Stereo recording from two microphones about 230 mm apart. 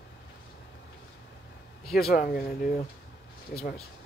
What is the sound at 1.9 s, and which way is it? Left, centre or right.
Speech, left.